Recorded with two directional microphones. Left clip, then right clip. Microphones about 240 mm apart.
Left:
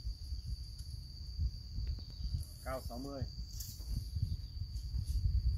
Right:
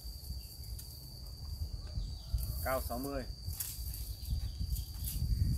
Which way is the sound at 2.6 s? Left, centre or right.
Centre.